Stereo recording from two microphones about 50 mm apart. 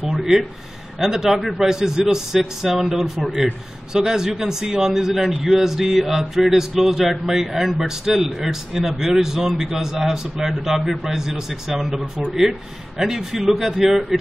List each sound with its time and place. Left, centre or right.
0.1 s speech: centre
3.3 s a man's voice: right
3.9 s a man's voice: centre